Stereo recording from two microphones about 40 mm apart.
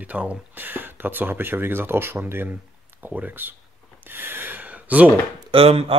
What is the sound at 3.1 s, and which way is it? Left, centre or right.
Speech, right.